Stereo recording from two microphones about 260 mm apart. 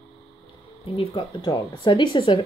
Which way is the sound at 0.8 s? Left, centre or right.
Left.